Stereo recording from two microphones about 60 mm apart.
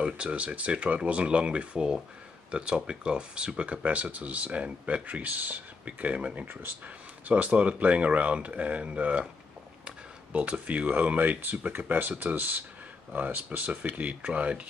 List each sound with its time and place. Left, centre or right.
0.0 s speech: centre
6.4 s speech: right
7.2 s speech: right